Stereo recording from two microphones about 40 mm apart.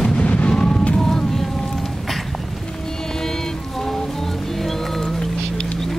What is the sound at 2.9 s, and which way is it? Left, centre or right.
Music, centre.